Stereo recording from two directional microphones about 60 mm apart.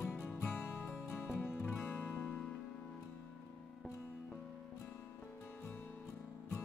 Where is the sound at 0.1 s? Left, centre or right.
Left.